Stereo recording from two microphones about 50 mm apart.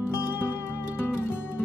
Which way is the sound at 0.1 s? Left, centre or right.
Left.